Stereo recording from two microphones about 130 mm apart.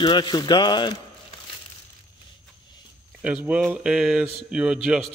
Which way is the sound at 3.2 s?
10° right (ahead or behind).